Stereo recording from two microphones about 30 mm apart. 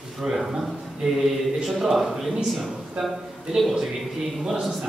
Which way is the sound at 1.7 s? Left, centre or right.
Centre.